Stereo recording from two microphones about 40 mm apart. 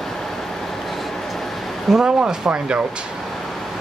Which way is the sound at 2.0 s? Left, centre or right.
Centre.